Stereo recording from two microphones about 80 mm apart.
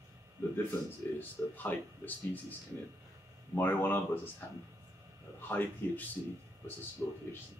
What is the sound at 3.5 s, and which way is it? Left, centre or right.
Speech, left.